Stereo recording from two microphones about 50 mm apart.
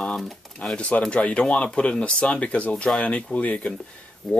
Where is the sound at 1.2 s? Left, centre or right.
Left.